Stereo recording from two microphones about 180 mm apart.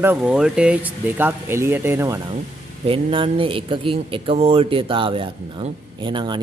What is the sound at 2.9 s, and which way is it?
Speech, 30° right (ahead or behind).